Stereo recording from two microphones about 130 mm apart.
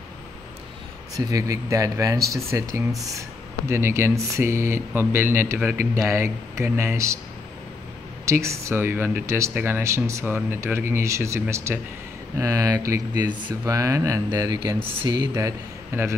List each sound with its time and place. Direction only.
1.1 s speech: 25° right (ahead or behind)
8.3 s speech: 20° right (ahead or behind)
13.7 s speech: 25° right (ahead or behind)
15.3 s speech: 20° right (ahead or behind)